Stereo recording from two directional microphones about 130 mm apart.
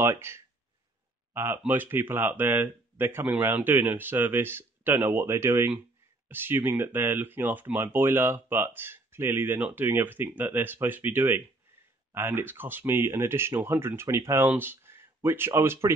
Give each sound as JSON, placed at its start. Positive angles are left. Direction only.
{"t": 0.0, "sound": "speech", "side_deg": -20}